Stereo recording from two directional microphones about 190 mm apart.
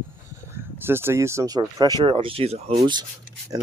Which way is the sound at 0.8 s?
10° right (ahead or behind).